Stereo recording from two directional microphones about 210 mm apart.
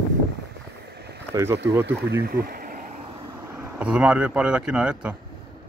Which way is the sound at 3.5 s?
5° right (ahead or behind).